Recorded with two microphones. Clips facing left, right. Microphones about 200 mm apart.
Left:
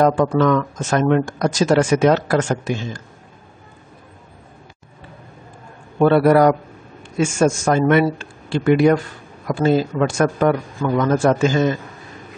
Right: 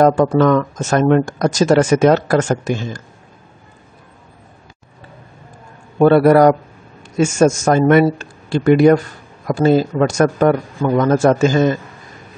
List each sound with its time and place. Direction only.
0.0 s speech: 45° right (ahead or behind)
5.9 s a man's voice: 45° right (ahead or behind)